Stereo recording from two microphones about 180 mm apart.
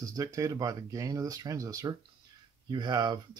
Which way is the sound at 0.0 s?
20° right (ahead or behind).